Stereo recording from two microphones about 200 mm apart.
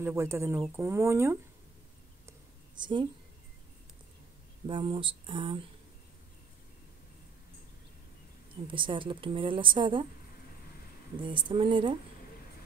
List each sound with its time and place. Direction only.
0.0 s speech: 15° right (ahead or behind)
2.2 s a sound: 20° right (ahead or behind)
4.6 s a woman's voice: 25° right (ahead or behind)
8.7 s a woman's voice: 25° right (ahead or behind)
11.1 s a woman's voice: 25° right (ahead or behind)